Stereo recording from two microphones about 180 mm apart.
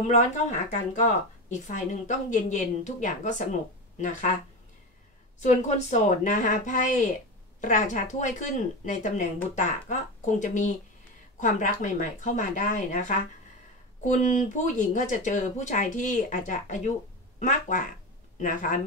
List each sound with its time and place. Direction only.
0.0 s speech: 40° left (ahead or behind)
5.4 s speech: 40° left (ahead or behind)